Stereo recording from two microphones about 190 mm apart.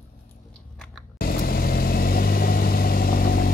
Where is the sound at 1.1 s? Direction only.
50° left (ahead or behind).